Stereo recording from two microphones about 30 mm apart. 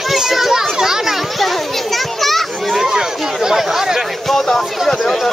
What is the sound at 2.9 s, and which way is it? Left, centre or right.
Speech, right.